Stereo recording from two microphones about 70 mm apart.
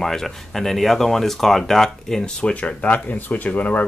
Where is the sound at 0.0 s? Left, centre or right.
Centre.